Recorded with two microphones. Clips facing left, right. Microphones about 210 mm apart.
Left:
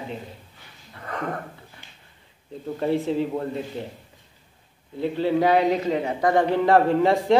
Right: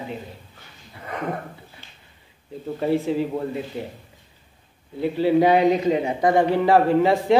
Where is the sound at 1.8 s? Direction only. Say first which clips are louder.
Right 1 dB; 15° left (ahead or behind).